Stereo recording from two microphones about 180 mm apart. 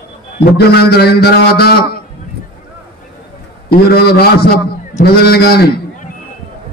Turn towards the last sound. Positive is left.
turn(degrees=60)  # may be behind; listen again after turning